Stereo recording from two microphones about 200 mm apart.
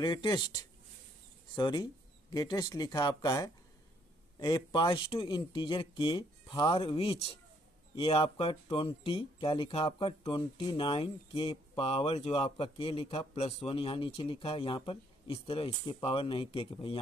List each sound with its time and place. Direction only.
0.0 s speech: 20° left (ahead or behind)
1.5 s speech: 20° left (ahead or behind)